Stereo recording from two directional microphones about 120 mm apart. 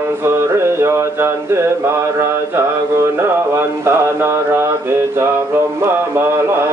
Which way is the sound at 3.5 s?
20° right (ahead or behind).